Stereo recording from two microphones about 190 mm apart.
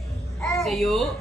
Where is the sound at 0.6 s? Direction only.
Centre (ahead or behind).